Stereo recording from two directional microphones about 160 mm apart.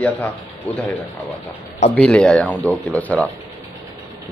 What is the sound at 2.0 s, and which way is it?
Speech, 5° left (ahead or behind).